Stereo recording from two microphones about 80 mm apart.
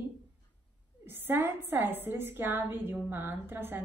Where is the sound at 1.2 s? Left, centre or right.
Right.